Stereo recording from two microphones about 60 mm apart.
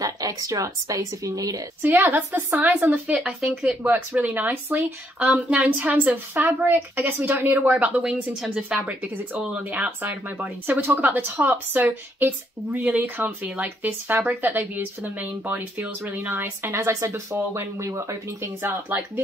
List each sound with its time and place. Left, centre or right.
0.0 s a woman's voice: right
1.8 s speech: right
3.3 s a woman's voice: centre
3.8 s a woman's voice: right
8.0 s a woman's voice: centre
9.0 s speech: right
18.4 s speech: right